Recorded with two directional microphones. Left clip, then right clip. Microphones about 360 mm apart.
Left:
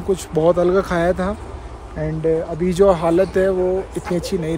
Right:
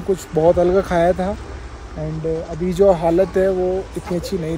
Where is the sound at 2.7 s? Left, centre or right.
Centre.